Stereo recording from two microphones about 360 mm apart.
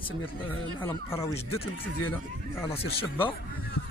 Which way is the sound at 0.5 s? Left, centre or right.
Centre.